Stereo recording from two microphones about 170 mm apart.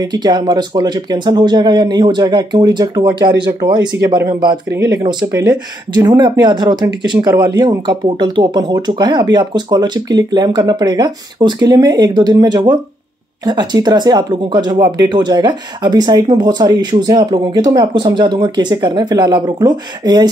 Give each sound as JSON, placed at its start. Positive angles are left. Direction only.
{"t": 0.0, "sound": "speech", "side_deg": -25}